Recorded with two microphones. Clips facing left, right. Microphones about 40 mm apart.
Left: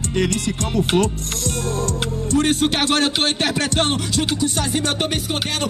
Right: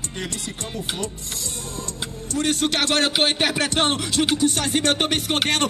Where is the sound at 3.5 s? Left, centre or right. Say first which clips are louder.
Left 1 dB; centre.